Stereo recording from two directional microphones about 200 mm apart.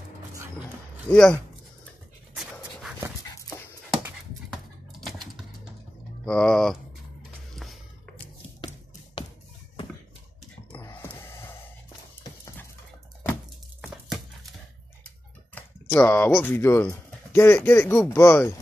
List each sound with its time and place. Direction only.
1.1 s speech: 5° left (ahead or behind)
3.9 s dog: centre (ahead or behind)
5.0 s a sound: centre (ahead or behind)
6.2 s speech: 5° left (ahead or behind)
7.5 s music: centre (ahead or behind)
8.5 s tap: 20° left (ahead or behind)
10.7 s gasp: 10° left (ahead or behind)
15.5 s a sound: 10° left (ahead or behind)
16.3 s speech: 10° left (ahead or behind)